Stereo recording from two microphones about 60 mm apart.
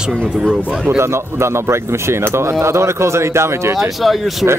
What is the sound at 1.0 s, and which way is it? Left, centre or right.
Speech, right.